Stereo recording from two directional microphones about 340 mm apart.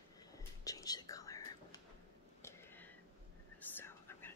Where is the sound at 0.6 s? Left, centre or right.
Centre.